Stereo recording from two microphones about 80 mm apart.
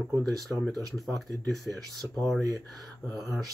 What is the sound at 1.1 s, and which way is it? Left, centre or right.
Speech, right.